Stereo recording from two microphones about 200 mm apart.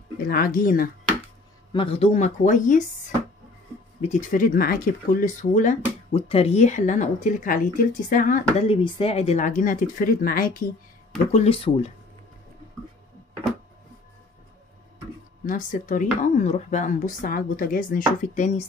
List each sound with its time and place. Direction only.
0.3 s speech: 45° left (ahead or behind)
1.7 s speech: 25° left (ahead or behind)
4.0 s speech: 40° left (ahead or behind)
11.3 s speech: 30° left (ahead or behind)
15.4 s speech: 40° left (ahead or behind)